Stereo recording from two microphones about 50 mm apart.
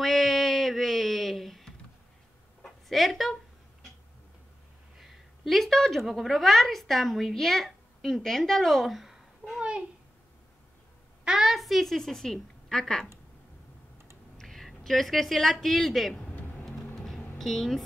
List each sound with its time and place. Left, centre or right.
0.0 s a sound: centre
4.9 s a woman's voice: centre
9.6 s a sound: right
11.2 s a woman's voice: centre
14.4 s a woman's voice: centre
16.6 s music: centre